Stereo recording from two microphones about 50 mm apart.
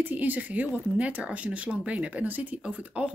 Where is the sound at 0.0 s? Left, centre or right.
Right.